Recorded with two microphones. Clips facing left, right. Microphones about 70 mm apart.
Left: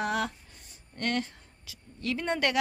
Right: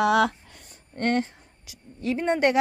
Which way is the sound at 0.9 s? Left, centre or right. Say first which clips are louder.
Right 6 dB; right.